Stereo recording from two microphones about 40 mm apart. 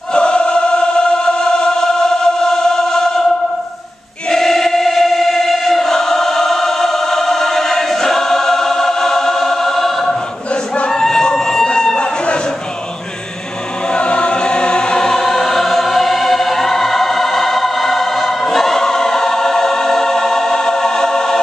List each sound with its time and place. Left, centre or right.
0.1 s choir: left
4.3 s choir: centre
10.9 s singing: centre
11.6 s a sound: centre
13.9 s choir: left